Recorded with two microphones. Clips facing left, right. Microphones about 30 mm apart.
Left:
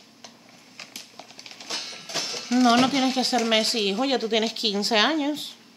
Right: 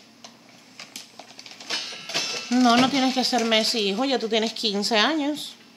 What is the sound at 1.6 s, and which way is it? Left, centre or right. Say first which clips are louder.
Train: right 3 dB; right.